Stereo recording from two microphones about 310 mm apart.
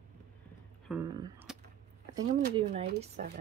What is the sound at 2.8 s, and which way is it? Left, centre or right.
Speech, right.